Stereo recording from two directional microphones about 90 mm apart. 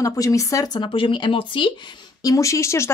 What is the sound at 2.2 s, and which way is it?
Speech, 35° left (ahead or behind).